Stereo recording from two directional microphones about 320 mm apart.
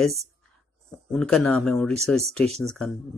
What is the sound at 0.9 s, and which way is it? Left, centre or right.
Speech, centre.